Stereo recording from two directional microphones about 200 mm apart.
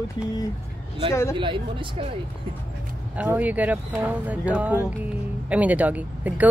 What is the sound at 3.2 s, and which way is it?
Speech, 10° right (ahead or behind).